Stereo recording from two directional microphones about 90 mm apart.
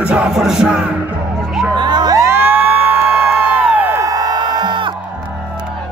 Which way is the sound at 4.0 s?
40° right (ahead or behind).